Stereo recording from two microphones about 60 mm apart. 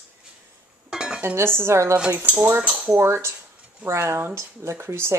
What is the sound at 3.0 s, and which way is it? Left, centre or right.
Speech, right.